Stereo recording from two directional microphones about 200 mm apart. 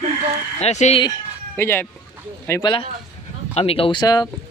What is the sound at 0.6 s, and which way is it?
Speech, 35° left (ahead or behind).